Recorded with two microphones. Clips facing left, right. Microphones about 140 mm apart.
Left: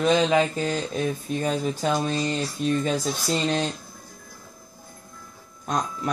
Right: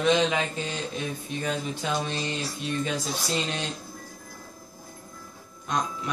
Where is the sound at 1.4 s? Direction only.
40° left (ahead or behind).